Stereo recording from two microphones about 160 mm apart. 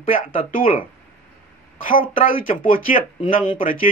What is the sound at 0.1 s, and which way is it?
Speech, 60° left (ahead or behind).